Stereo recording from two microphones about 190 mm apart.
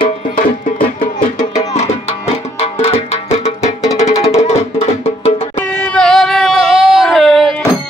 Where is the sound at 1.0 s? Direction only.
40° left (ahead or behind).